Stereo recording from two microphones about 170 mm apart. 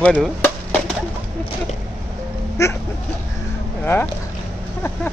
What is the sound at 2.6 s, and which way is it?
Speech, 15° left (ahead or behind).